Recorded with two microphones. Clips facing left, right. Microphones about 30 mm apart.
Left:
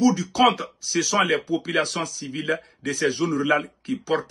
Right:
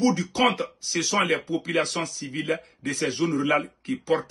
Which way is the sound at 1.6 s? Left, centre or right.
Left.